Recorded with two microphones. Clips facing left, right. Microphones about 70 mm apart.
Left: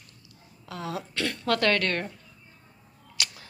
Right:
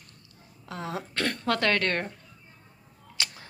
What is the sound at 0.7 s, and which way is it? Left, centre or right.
Speech, right.